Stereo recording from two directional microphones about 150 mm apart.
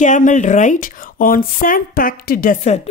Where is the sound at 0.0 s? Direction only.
55° left (ahead or behind).